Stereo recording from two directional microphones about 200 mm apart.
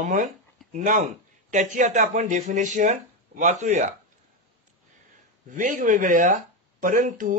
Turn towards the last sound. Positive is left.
turn(degrees=-40)  # may be behind; listen again after turning